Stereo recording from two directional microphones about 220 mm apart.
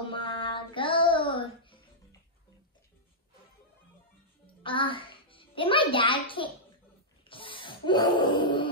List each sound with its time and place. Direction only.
0.1 s music: 25° left (ahead or behind)
4.5 s a child's voice: 25° left (ahead or behind)
7.2 s a sound: 25° left (ahead or behind)